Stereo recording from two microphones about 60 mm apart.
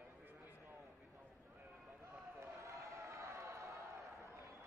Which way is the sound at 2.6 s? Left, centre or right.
Right.